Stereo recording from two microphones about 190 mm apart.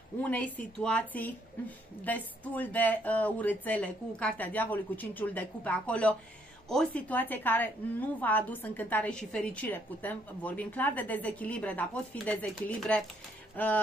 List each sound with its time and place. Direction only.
0.2 s a woman's voice: 10° left (ahead or behind)